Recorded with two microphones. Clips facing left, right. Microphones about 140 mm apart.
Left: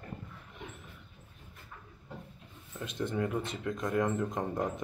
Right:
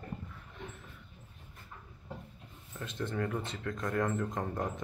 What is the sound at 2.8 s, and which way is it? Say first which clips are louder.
Speech: left 2 dB; 15° left (ahead or behind).